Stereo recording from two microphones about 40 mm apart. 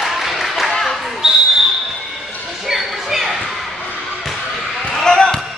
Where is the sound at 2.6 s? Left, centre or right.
Centre.